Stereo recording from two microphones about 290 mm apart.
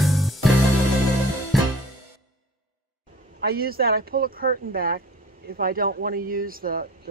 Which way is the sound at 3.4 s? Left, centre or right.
Right.